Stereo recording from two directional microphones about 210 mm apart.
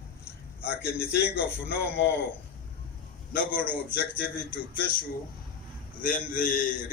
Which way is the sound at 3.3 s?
45° left (ahead or behind).